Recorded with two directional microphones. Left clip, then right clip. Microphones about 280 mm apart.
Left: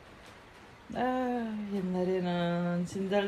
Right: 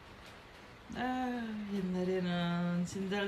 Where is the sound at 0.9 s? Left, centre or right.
Centre.